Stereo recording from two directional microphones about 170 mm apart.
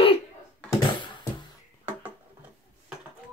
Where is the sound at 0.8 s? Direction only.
30° left (ahead or behind).